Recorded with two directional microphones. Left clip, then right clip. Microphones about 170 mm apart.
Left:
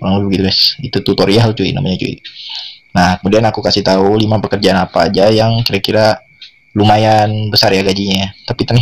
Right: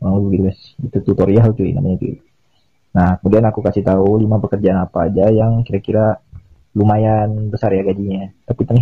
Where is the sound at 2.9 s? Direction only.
15° left (ahead or behind).